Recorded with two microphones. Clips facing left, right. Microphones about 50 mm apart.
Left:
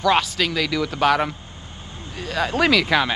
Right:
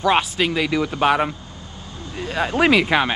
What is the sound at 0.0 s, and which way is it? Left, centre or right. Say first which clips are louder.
Speech: right 1 dB; right.